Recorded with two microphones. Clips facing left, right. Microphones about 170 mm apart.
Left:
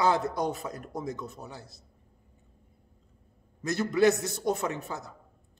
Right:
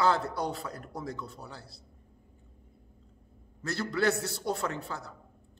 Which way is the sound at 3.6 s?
20° left (ahead or behind).